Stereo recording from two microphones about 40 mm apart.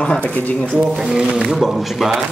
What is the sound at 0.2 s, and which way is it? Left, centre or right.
Speech, left.